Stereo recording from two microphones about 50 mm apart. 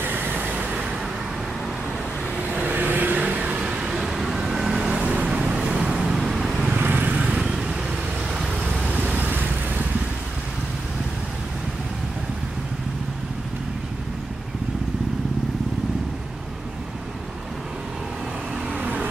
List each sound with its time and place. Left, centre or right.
0.4 s vehicle: right
2.4 s vehicle: right
3.2 s vehicle: right
5.9 s vehicle: centre
6.7 s vehicle: right
7.2 s vehicle: centre
9.0 s vehicle: right
18.8 s vehicle: right